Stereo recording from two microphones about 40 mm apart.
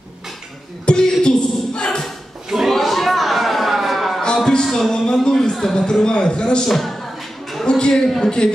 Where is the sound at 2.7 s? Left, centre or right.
Centre.